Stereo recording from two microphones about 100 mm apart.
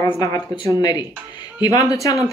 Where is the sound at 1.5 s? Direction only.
40° left (ahead or behind).